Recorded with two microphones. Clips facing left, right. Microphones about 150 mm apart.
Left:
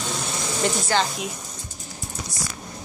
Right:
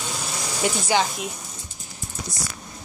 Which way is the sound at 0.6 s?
10° right (ahead or behind).